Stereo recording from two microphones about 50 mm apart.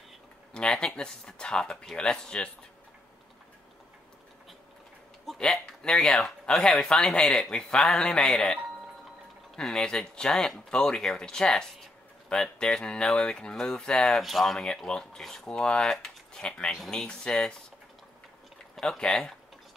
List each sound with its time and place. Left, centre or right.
0.5 s speech: centre
5.2 s a man's voice: centre
9.6 s speech: centre
18.8 s speech: centre